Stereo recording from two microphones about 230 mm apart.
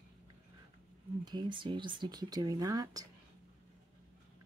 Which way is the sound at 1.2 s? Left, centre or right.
Centre.